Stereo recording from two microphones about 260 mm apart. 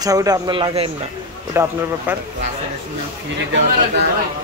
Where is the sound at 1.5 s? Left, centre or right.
Centre.